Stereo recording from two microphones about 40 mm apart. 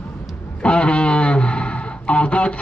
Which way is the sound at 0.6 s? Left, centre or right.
Left.